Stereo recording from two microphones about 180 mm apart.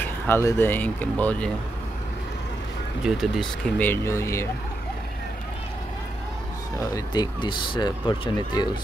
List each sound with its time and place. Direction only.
0.0 s speech: 15° left (ahead or behind)
3.0 s speech: centre (ahead or behind); by 4.5 s 15° left (ahead or behind)
6.8 s speech: 25° left (ahead or behind)